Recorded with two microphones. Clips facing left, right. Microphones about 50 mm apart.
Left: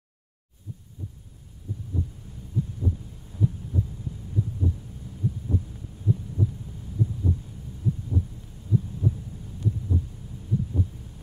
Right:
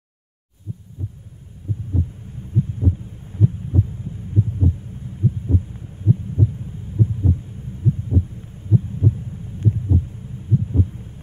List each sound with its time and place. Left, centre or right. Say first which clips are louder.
1.7 s heart sounds: right 6 dB; right